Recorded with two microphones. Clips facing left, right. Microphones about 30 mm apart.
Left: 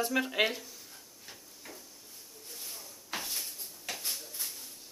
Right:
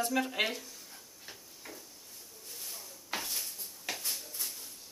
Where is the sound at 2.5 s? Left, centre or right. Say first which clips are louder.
Even; centre.